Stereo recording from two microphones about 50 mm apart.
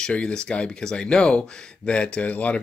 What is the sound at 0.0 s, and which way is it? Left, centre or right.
Speech, centre.